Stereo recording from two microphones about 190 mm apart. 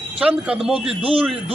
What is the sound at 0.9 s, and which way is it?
Speech, 30° right (ahead or behind).